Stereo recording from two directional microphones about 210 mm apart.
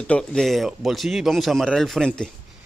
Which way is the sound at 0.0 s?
5° left (ahead or behind).